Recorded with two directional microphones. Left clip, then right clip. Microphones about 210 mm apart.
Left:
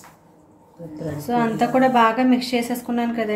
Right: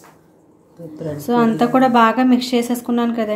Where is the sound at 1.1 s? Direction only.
25° right (ahead or behind).